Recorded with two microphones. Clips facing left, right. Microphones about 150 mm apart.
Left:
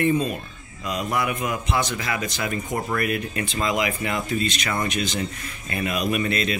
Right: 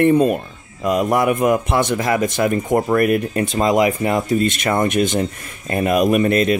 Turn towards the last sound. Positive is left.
turn(degrees=-50)  # may be behind; listen again after turning